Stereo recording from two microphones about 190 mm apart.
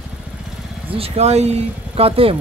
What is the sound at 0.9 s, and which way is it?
Speech, 30° right (ahead or behind).